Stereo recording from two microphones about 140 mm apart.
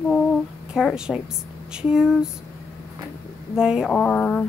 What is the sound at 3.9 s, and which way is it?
Speech, 10° left (ahead or behind).